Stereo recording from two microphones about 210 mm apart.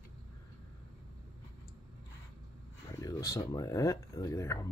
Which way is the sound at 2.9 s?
15° left (ahead or behind).